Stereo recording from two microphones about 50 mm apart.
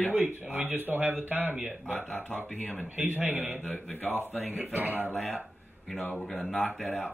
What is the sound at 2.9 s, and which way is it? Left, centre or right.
Speech, right.